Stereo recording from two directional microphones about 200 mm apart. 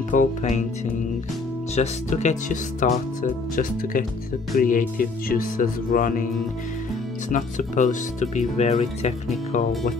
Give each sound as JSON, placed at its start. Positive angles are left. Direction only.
{"t": 0.1, "sound": "speech", "side_deg": 40}
{"t": 1.8, "sound": "speech", "side_deg": 35}
{"t": 7.2, "sound": "speech", "side_deg": 40}